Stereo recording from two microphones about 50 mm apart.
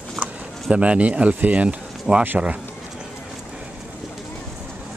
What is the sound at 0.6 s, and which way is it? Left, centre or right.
Speech, right.